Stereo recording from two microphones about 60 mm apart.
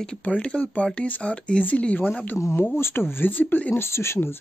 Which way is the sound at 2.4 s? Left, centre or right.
Left.